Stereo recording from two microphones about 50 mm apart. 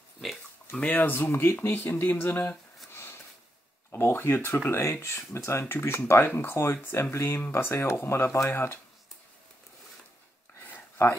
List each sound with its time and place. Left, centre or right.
0.8 s speech: left
1.1 s speech: left
1.7 s speech: left
2.9 s a sound: left
3.9 s speech: left
10.6 s a sound: left